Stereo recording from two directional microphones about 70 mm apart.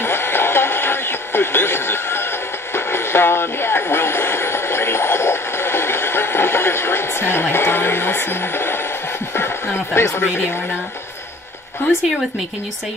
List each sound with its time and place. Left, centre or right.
0.0 s radio: left
2.7 s a sound: left
9.8 s speech: left